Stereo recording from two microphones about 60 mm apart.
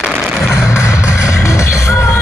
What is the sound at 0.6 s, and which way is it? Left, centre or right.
Music, left.